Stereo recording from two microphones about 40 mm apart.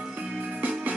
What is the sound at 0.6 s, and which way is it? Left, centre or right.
Music, right.